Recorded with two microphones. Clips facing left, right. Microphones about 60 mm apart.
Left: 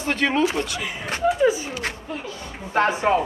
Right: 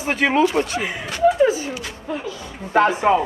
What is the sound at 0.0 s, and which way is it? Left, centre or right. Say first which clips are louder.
Speech: right 3 dB; centre.